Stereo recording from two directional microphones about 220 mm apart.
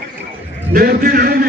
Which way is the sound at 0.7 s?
40° right (ahead or behind).